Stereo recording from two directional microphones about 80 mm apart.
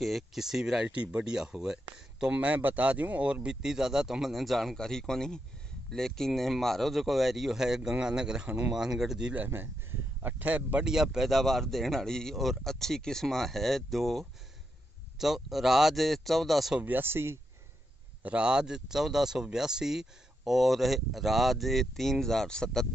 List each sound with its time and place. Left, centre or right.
0.0 s speech: centre
9.3 s speech: right
10.9 s speech: centre
16.8 s speech: right
18.2 s speech: centre